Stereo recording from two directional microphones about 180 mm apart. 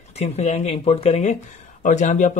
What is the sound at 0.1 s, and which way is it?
Speech, 40° left (ahead or behind).